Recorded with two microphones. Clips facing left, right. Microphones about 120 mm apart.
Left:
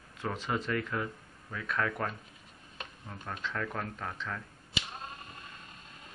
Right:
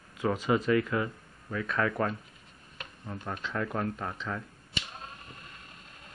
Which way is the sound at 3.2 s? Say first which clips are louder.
Right 3 dB; 15° right (ahead or behind).